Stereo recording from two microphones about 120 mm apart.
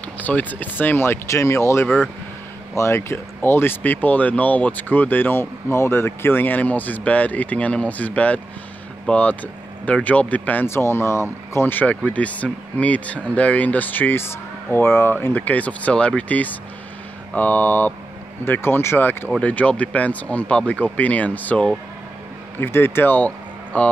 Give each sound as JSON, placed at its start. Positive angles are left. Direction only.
{"t": 0.2, "sound": "speech", "side_deg": 15}